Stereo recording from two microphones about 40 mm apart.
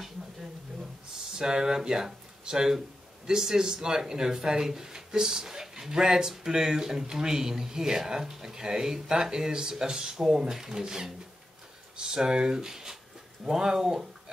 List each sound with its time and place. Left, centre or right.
1.3 s speech: centre